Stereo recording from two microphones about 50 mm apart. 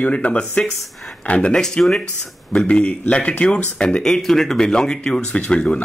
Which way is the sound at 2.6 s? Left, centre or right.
Left.